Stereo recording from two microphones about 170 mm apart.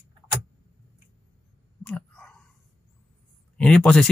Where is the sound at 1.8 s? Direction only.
5° left (ahead or behind).